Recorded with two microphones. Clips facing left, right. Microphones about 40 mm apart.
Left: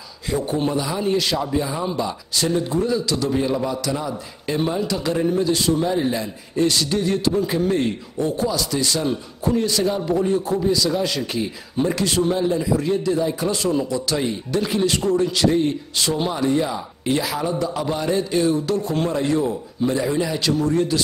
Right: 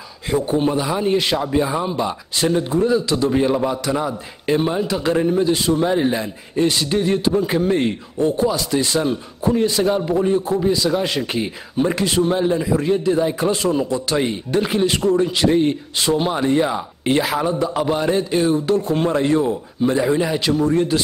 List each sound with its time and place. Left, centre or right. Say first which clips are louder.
0.3 s a man's voice: right 3 dB; right